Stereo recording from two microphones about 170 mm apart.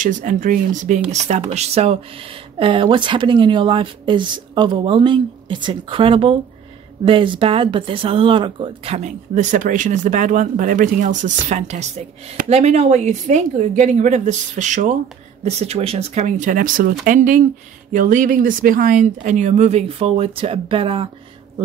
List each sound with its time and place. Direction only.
0.0 s speech: 50° right (ahead or behind); by 21.1 s 30° right (ahead or behind)